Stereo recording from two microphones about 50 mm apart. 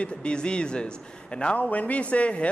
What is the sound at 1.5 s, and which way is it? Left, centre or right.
Speech, left.